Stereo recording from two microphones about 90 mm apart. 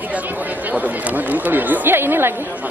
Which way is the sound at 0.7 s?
20° right (ahead or behind).